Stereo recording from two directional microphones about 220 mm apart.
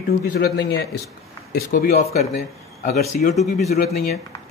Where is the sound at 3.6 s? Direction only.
45° left (ahead or behind).